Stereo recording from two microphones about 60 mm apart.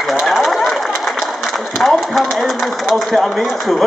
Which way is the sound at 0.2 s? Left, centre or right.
Centre.